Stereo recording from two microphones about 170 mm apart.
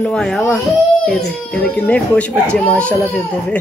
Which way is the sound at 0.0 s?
5° left (ahead or behind).